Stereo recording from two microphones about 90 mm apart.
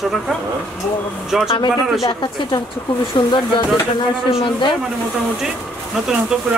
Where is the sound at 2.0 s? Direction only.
55° left (ahead or behind).